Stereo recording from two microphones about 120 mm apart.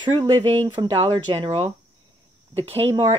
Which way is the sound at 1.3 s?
55° right (ahead or behind).